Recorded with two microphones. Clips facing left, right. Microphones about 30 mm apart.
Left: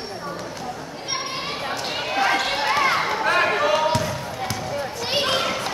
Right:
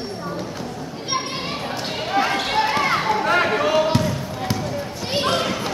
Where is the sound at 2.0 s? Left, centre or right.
Centre.